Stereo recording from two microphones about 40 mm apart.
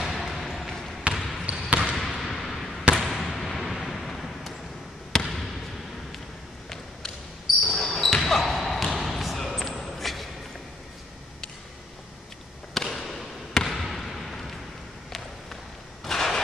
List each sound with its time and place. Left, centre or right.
0.0 s a sound: centre
0.7 s basketball bounce: centre
1.1 s trickle: centre
1.7 s trickle: right
2.0 s basketball bounce: centre
3.0 s fireworks: centre
5.1 s basketball bounce: centre
7.4 s basketball bounce: centre
12.7 s basketball bounce: centre
16.0 s a sound: centre